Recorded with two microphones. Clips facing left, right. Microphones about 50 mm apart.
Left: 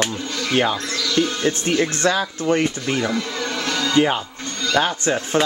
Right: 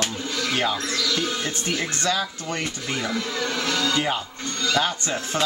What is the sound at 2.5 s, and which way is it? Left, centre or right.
Speech, left.